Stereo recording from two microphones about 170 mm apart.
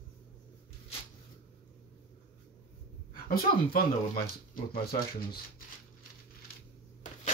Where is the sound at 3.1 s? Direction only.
60° left (ahead or behind).